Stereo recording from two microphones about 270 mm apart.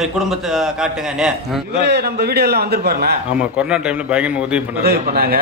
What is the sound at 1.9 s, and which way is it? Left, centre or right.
A man's voice, right.